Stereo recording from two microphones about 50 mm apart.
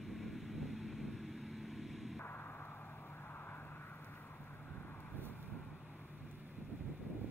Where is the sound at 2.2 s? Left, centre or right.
Left.